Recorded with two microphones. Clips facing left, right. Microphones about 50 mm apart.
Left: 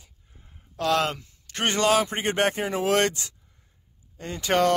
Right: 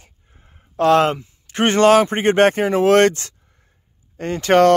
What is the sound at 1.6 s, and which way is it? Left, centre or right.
Speech, right.